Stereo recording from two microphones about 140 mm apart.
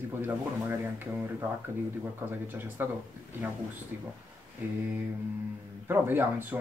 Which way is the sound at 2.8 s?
15° right (ahead or behind).